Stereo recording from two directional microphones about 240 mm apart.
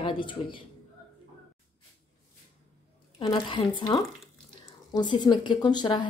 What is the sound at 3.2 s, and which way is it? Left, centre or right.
Speech, centre.